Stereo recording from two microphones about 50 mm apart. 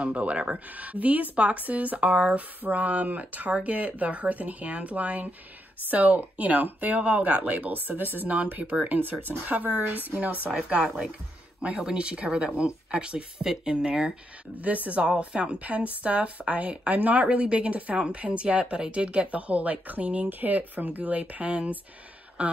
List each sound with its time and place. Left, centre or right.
0.0 s a woman's voice: right
10.7 s a woman's voice: right
14.6 s a woman's voice: right